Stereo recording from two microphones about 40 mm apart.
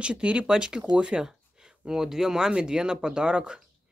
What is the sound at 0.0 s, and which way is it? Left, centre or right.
Speech, right.